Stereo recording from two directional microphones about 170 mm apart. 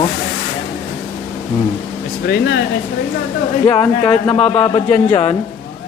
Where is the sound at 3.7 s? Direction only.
30° left (ahead or behind).